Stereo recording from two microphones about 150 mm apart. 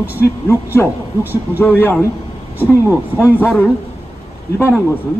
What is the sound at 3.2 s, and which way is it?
Speech, 15° left (ahead or behind).